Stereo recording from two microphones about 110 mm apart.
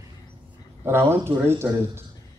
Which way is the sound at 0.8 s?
20° right (ahead or behind).